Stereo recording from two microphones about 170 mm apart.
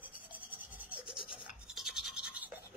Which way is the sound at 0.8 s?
10° right (ahead or behind).